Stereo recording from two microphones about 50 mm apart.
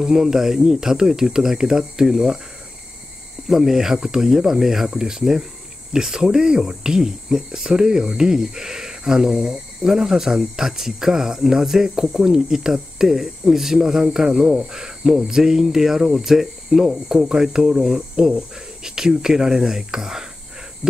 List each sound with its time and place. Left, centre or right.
0.0 s cricket: centre
3.4 s cricket: centre